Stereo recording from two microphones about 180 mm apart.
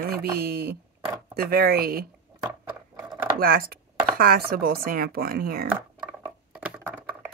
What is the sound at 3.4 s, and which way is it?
Speech, 55° right (ahead or behind).